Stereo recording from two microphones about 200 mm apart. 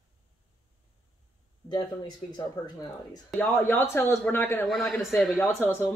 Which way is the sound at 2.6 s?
20° left (ahead or behind).